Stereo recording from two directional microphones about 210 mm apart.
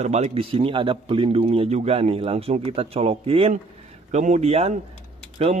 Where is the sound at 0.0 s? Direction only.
30° right (ahead or behind).